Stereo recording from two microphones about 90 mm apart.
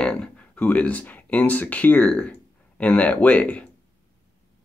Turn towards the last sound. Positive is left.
turn(degrees=15)  # may be behind; listen again after turning